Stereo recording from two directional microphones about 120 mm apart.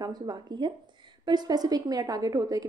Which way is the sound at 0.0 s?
35° right (ahead or behind).